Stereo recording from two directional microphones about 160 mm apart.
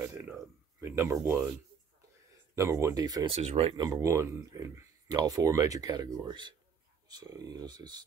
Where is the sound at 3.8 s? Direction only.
20° right (ahead or behind).